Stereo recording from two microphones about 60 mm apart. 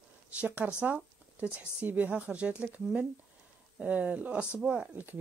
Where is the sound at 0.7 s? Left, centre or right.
Right.